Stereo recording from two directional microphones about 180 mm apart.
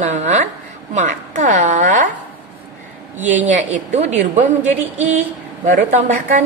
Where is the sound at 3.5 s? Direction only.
40° right (ahead or behind).